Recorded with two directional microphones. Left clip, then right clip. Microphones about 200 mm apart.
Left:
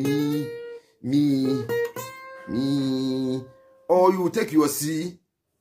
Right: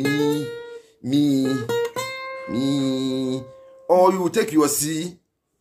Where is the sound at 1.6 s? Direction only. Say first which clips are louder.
Right 3 dB; 30° right (ahead or behind).